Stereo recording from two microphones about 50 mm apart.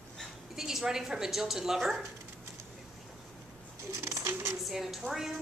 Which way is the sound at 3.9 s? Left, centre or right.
Right.